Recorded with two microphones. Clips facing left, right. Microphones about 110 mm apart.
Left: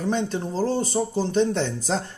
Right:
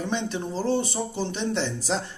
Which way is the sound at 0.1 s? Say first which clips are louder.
Left 3 dB; 40° left (ahead or behind).